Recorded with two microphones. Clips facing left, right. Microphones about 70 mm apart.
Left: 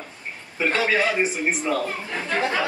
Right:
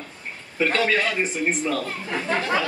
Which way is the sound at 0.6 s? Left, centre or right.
Centre.